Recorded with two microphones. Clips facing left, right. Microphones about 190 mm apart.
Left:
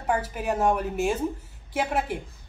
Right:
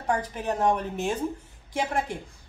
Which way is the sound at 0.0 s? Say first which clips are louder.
Left 1 dB; 5° left (ahead or behind).